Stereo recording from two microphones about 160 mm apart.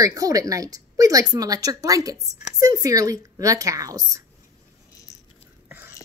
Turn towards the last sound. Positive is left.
turn(degrees=-10)  # may be behind; listen again after turning